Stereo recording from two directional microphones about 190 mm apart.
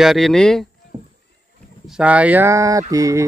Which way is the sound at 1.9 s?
5° right (ahead or behind).